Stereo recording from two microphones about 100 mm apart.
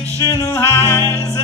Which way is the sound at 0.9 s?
25° left (ahead or behind).